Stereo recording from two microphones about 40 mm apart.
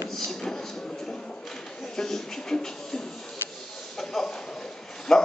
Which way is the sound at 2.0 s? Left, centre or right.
Centre.